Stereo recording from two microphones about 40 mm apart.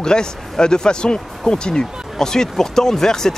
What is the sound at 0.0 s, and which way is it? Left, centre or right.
Speech, centre.